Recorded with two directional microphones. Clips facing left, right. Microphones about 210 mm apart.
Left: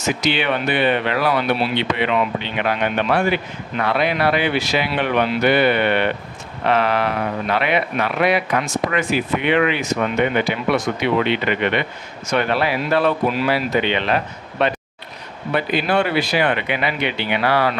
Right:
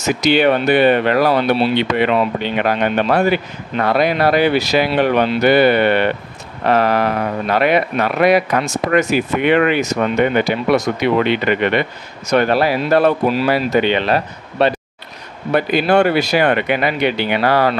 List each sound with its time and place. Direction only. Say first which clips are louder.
0.0 s speech: right 7 dB; 40° right (ahead or behind)